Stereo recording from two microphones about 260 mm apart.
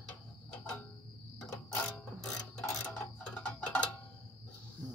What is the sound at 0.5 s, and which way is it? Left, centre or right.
Cricket, centre.